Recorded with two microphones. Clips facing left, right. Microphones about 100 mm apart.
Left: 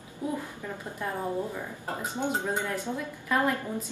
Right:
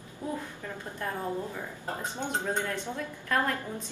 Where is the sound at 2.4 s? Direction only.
15° left (ahead or behind).